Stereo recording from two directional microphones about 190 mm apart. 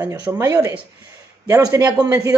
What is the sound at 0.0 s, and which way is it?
A man's voice, 15° right (ahead or behind).